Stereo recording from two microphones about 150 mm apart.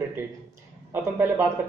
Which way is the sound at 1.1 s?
15° right (ahead or behind).